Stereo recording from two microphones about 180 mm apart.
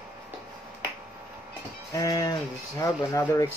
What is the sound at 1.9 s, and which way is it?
Speech, 20° left (ahead or behind).